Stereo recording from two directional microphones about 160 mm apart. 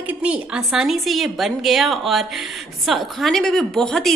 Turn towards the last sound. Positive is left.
turn(degrees=5)  # may be behind; listen again after turning